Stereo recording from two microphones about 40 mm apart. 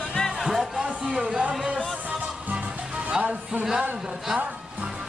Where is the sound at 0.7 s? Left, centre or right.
Centre.